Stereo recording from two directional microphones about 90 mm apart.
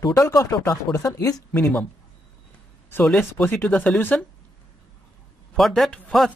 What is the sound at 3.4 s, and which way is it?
Speech, 20° left (ahead or behind).